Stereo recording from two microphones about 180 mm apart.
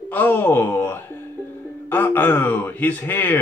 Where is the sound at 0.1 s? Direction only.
10° left (ahead or behind).